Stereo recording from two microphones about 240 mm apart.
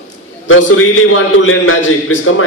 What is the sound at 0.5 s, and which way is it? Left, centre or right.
A man's voice, left.